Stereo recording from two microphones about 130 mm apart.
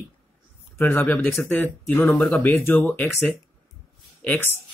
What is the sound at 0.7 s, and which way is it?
Speech, 15° left (ahead or behind).